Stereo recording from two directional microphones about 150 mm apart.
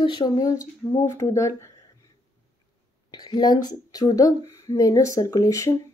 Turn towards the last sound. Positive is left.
turn(degrees=20)  # may be behind; listen again after turning